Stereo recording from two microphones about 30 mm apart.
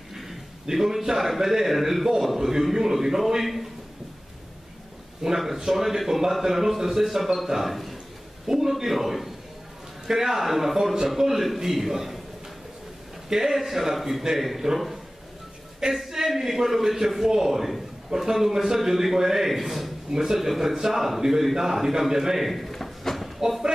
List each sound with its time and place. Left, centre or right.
0.1 s a sound: centre
0.7 s a man's voice: centre
5.2 s a man's voice: centre
13.3 s a man's voice: centre
16.0 s a sound: centre
16.3 s a man's voice: centre
20.1 s a man's voice: centre
22.4 s drawer open or close: centre